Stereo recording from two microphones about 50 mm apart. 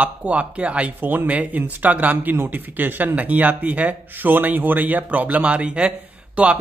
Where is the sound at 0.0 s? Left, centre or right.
Right.